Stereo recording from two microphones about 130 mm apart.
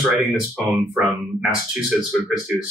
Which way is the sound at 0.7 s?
Centre (ahead or behind).